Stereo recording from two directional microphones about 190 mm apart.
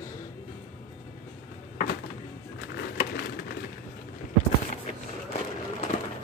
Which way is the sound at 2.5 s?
60° left (ahead or behind).